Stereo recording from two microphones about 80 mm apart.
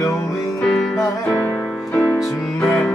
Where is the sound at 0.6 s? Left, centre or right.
Centre.